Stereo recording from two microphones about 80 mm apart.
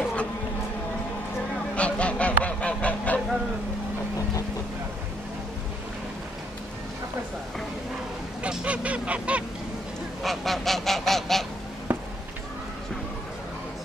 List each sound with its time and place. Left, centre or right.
0.0 s a sound: centre
1.8 s honk: centre
2.4 s goose: centre
8.4 s goose: centre
10.2 s goose: centre
11.9 s a sound: centre